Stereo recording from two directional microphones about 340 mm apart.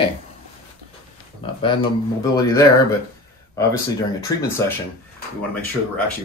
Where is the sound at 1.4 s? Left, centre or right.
Centre.